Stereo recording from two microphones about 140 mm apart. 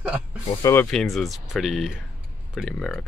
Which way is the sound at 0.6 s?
20° left (ahead or behind).